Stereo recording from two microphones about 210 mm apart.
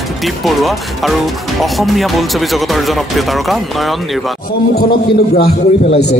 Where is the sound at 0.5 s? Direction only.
Centre (ahead or behind).